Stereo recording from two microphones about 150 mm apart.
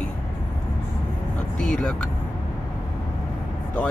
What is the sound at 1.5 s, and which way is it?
Speech, 5° left (ahead or behind).